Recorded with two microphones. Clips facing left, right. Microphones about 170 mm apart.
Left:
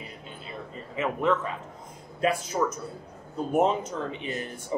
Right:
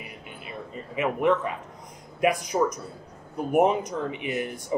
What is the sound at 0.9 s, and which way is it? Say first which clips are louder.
Speech: right 3 dB; 15° right (ahead or behind).